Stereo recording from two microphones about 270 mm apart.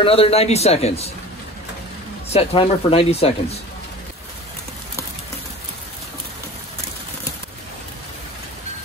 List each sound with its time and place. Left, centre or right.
0.0 s speech: left
2.3 s speech: left